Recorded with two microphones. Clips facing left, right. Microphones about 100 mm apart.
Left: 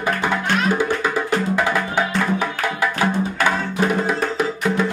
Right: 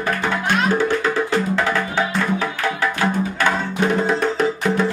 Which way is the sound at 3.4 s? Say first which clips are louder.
Even; 5° left (ahead or behind).